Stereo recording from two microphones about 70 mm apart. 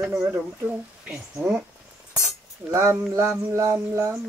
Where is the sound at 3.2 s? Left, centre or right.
Right.